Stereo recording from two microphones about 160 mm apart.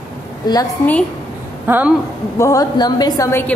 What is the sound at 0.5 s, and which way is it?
Speech, 25° left (ahead or behind).